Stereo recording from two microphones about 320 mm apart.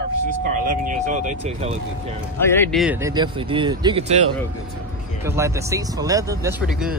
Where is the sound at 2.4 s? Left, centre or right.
Centre.